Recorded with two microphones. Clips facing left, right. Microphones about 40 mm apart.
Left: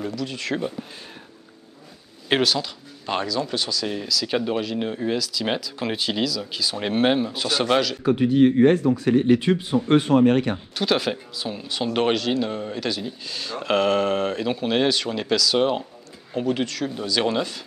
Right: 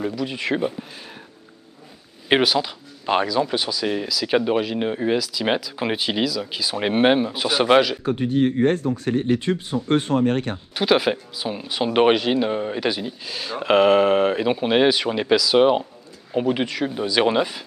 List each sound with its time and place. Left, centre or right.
0.0 s speech: centre
2.2 s speech: centre
8.0 s speech: left
9.0 s speech: left
10.8 s speech: centre